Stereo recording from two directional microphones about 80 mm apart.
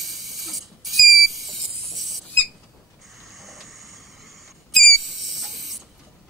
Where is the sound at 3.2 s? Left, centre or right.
Centre.